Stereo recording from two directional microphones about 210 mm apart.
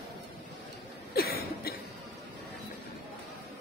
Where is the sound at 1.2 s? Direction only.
45° left (ahead or behind).